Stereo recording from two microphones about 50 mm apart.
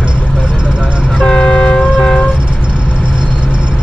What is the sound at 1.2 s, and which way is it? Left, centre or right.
Train, centre.